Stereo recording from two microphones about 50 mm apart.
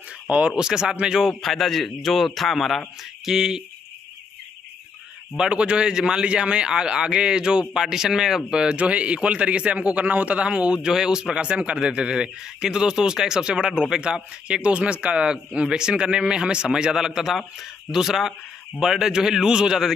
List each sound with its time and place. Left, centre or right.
0.6 s a man's voice: centre
1.4 s a man's voice: centre
5.4 s a man's voice: right
8.5 s a man's voice: right